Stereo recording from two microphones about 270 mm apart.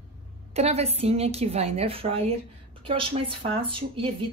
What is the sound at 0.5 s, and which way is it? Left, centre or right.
Speech, right.